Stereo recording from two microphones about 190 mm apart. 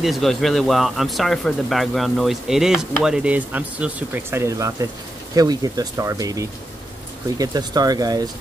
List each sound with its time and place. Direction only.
0.0 s speech: centre (ahead or behind); by 8.3 s 20° right (ahead or behind)